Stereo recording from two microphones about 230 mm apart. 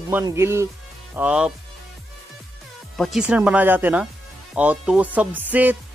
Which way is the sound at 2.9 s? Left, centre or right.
Centre.